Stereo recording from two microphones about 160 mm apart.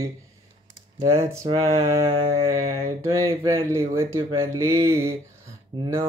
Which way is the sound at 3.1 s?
20° right (ahead or behind).